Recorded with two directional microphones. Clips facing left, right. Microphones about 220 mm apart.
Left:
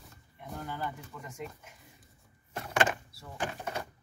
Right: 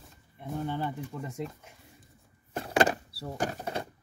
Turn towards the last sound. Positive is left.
turn(degrees=-35)  # may be behind; listen again after turning